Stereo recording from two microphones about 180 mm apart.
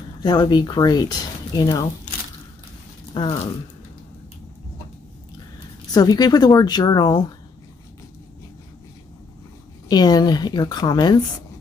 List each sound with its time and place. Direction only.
0.2 s speech: 25° left (ahead or behind)
3.1 s speech: 25° left (ahead or behind)
5.9 s speech: 20° left (ahead or behind)
9.8 s speech: 20° left (ahead or behind)